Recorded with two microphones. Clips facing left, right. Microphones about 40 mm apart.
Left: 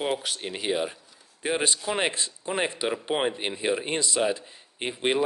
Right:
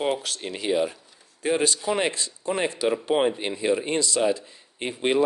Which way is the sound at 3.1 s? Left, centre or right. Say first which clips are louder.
Right 4 dB; centre.